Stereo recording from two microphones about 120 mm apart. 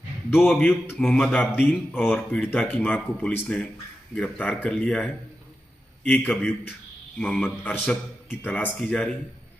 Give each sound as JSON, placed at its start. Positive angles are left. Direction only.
{"t": 0.3, "sound": "speech", "side_deg": 15}
{"t": 6.1, "sound": "speech", "side_deg": 10}